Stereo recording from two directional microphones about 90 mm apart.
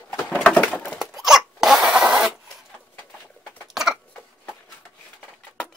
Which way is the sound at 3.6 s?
5° right (ahead or behind).